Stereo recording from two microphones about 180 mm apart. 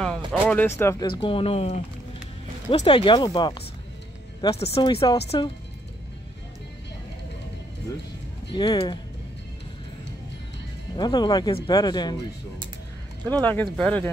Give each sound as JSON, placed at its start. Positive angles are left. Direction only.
{"t": 0.0, "sound": "a sound", "side_deg": 5}
{"t": 1.0, "sound": "speech", "side_deg": 25}
{"t": 8.5, "sound": "speech", "side_deg": 25}
{"t": 11.0, "sound": "speech", "side_deg": 25}
{"t": 13.2, "sound": "speech", "side_deg": 10}